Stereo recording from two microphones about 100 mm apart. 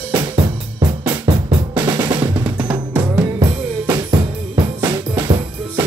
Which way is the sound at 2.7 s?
15° right (ahead or behind).